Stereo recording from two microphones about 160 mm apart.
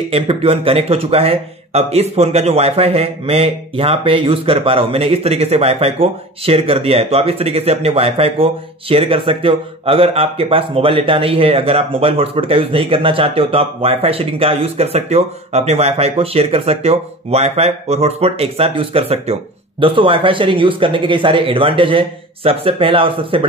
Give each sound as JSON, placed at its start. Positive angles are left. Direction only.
{"t": 0.1, "sound": "speech", "side_deg": -35}